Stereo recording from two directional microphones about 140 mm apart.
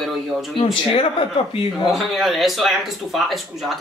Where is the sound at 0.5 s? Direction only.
40° left (ahead or behind).